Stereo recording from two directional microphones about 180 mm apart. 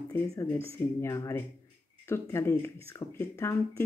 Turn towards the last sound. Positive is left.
turn(degrees=15)  # may be behind; listen again after turning